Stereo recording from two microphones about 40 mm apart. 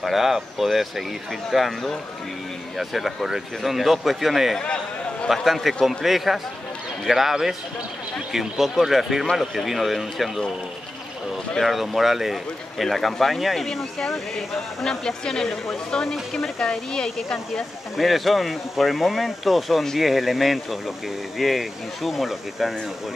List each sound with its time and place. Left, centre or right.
0.0 s a man's voice: centre
11.6 s speech: centre
17.9 s speech: centre